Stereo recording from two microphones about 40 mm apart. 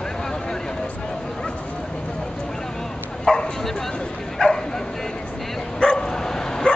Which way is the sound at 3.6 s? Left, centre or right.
Centre.